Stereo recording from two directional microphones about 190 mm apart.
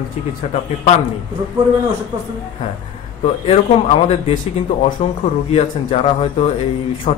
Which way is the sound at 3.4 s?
30° left (ahead or behind).